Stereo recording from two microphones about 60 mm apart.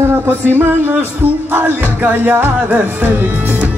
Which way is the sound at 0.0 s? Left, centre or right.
Right.